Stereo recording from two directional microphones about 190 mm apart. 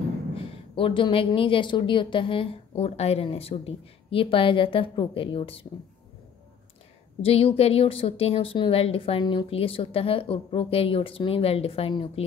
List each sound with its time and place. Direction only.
0.7 s a woman's voice: 25° left (ahead or behind)
7.2 s a woman's voice: 30° left (ahead or behind)